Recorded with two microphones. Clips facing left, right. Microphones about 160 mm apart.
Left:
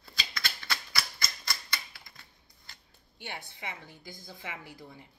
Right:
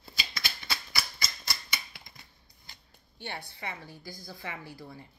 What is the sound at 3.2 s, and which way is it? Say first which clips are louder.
A woman's voice: right 2 dB; 15° left (ahead or behind).